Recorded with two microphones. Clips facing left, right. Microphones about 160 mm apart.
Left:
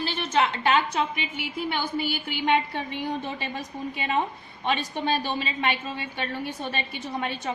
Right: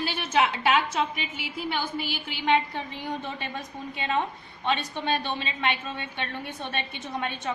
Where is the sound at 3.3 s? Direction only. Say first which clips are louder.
Left 2 dB; 5° left (ahead or behind).